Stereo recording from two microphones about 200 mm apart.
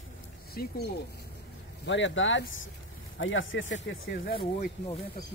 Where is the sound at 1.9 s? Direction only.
65° left (ahead or behind).